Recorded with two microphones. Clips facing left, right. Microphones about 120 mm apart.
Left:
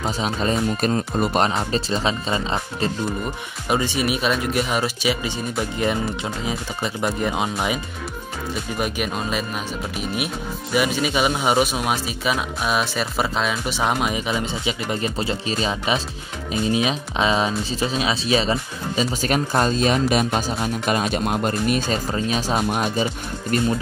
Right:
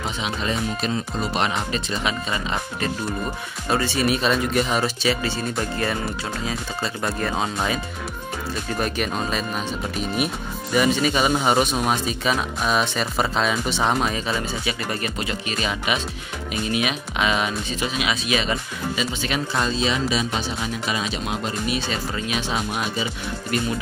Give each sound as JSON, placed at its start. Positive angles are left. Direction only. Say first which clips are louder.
{"t": 0.0, "sound": "speech", "louder": "left 4 dB", "side_deg": 40}
{"t": 1.5, "sound": "speech", "louder": "left 3 dB", "side_deg": 30}
{"t": 3.6, "sound": "speech", "louder": "even", "side_deg": 15}